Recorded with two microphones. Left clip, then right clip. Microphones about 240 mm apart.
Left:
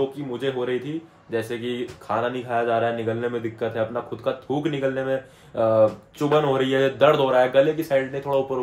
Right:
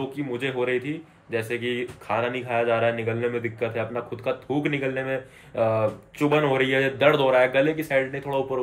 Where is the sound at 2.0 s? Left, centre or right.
Centre.